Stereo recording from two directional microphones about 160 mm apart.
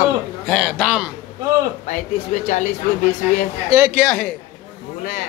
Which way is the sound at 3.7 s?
15° right (ahead or behind).